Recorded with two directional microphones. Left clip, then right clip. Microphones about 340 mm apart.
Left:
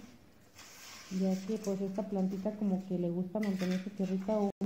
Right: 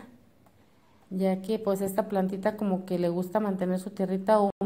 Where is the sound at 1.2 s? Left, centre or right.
Right.